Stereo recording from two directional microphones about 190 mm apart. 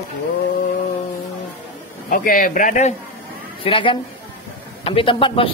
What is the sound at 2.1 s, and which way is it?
Speech, 45° left (ahead or behind).